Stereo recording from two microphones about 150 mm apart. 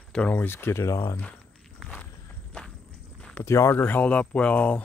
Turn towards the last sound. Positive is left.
turn(degrees=10)  # may be behind; listen again after turning